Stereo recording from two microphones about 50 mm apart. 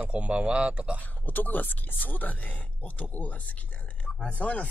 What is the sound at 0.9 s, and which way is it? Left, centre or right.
Speech, left.